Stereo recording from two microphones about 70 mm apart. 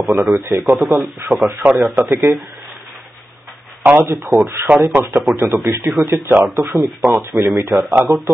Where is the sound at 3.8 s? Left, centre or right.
Right.